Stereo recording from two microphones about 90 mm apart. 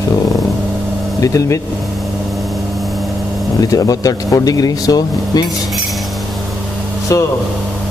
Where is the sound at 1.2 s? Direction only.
40° left (ahead or behind).